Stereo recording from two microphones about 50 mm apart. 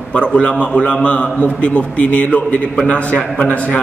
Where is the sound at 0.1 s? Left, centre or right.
Left.